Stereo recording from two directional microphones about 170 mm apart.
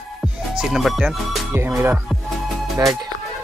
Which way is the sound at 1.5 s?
15° right (ahead or behind).